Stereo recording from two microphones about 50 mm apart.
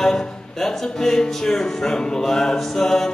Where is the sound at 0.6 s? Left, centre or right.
Centre.